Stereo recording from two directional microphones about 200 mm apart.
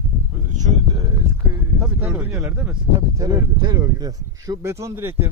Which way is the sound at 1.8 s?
5° right (ahead or behind).